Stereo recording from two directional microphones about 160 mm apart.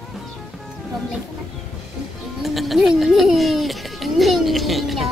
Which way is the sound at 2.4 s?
Centre (ahead or behind).